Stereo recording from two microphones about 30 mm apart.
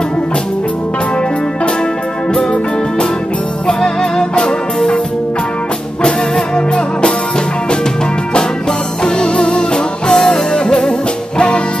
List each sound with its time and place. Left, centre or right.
3.6 s music: left
6.0 s music: left
9.0 s music: left
10.8 s music: left